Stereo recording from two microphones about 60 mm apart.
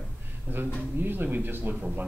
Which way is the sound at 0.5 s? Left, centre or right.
Right.